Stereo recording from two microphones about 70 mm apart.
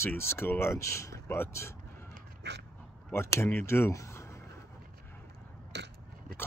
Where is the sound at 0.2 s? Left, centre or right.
Left.